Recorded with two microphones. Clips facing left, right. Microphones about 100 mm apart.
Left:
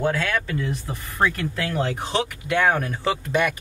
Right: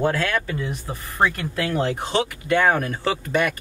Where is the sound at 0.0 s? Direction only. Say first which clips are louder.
Right 1 dB; centre (ahead or behind).